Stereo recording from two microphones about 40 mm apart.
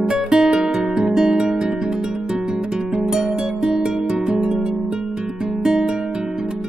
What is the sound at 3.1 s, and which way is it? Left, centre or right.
Guitar, centre.